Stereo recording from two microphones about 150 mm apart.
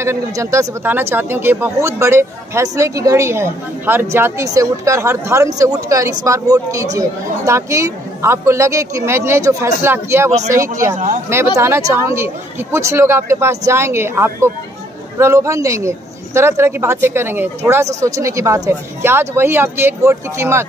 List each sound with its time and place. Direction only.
0.0 s speech: 20° right (ahead or behind)
11.5 s speech: 15° right (ahead or behind)